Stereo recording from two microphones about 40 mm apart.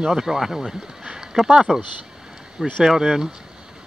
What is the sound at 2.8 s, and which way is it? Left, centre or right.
Speech, centre.